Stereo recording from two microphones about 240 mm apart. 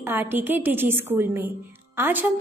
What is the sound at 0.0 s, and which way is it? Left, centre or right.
A woman's voice, centre.